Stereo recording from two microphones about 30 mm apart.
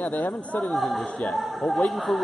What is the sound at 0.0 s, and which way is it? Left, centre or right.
Speech, left.